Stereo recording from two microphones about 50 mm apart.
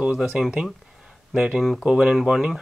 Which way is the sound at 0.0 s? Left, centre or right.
Centre.